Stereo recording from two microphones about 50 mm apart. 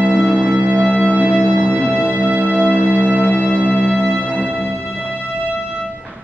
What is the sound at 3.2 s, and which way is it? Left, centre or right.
Music, left.